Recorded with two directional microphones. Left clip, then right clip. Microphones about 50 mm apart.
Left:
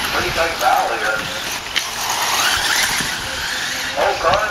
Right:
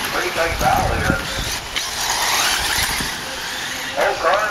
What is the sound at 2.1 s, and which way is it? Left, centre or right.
Vehicle, centre.